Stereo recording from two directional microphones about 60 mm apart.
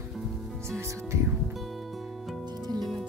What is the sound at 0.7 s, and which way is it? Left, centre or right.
Music, right.